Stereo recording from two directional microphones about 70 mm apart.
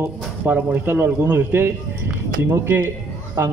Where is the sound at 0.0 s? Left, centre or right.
Right.